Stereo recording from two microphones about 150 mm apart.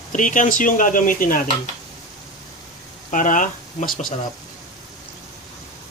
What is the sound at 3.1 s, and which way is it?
Speech, 60° left (ahead or behind).